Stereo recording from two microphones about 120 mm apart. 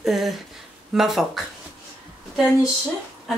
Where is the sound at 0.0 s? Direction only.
Centre (ahead or behind).